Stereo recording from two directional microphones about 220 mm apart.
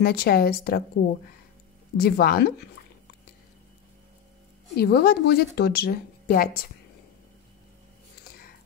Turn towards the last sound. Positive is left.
turn(degrees=45)  # may be behind; listen again after turning